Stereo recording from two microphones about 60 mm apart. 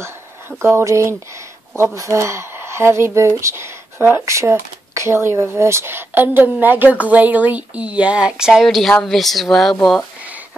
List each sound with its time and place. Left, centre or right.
0.0 s a sound: right
2.0 s speech: right
4.3 s speech: right; by 8.6 s centre
8.6 s speech: centre